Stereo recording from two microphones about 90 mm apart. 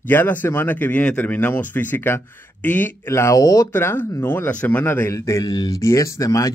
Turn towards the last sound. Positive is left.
turn(degrees=40)  # may be behind; listen again after turning